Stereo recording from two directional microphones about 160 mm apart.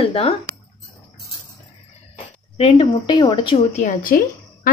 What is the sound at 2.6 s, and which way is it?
A woman's voice, 35° left (ahead or behind).